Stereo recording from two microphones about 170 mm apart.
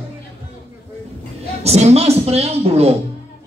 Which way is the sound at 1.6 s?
40° right (ahead or behind).